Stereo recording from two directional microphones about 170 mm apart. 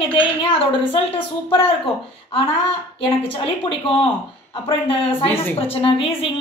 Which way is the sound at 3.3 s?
30° left (ahead or behind).